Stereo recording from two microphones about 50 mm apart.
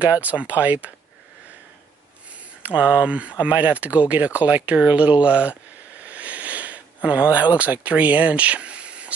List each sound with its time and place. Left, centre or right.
0.0 s speech: right
2.6 s speech: right
6.0 s a sound: right